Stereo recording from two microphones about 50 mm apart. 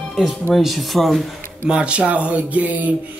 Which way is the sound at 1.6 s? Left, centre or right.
Centre.